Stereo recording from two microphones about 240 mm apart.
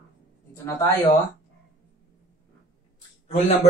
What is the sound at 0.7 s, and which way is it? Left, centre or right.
Speech, centre.